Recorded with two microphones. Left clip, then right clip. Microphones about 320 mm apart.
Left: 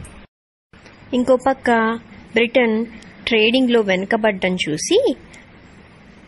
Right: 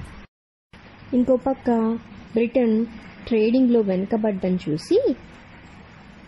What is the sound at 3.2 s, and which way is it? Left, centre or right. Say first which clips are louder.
A woman's voice: left 4 dB; left.